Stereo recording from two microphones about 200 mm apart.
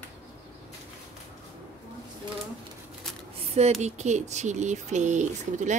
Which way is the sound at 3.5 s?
30° right (ahead or behind).